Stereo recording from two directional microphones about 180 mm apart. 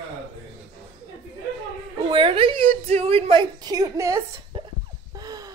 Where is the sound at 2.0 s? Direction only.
30° right (ahead or behind).